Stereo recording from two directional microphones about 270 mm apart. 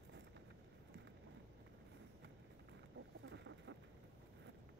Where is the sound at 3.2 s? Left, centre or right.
Right.